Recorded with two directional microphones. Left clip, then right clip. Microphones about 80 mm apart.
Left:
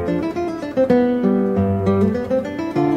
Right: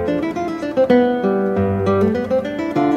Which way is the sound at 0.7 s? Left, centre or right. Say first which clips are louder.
Right 2 dB; left.